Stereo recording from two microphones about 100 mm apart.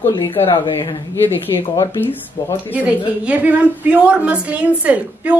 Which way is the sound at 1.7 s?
45° left (ahead or behind).